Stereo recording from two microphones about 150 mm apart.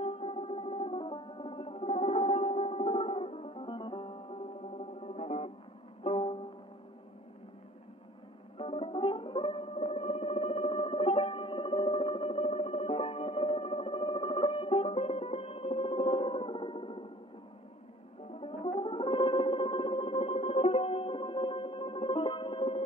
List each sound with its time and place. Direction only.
0.0 s music: 40° left (ahead or behind)
8.5 s music: 40° left (ahead or behind)
18.4 s music: 35° left (ahead or behind)